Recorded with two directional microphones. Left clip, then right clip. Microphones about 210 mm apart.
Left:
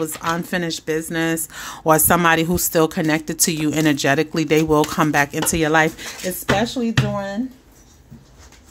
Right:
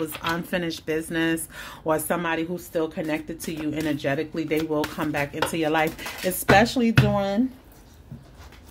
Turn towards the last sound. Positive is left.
turn(degrees=-5)  # may be behind; listen again after turning